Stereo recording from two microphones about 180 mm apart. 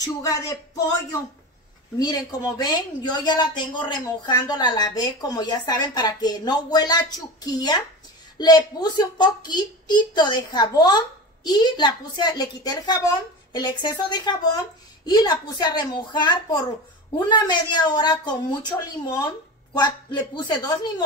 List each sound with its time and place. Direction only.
0.0 s speech: 20° left (ahead or behind)
2.0 s speech: 20° left (ahead or behind)